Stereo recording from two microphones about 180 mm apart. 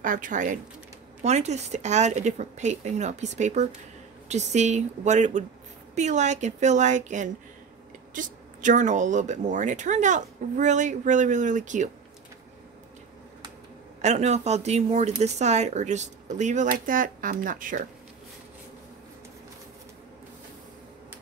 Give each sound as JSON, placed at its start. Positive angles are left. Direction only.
{"t": 0.0, "sound": "speech", "side_deg": -50}
{"t": 14.0, "sound": "speech", "side_deg": -40}